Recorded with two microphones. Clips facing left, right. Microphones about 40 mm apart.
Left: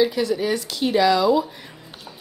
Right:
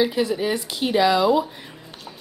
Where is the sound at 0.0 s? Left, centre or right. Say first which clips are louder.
Left 1 dB; centre.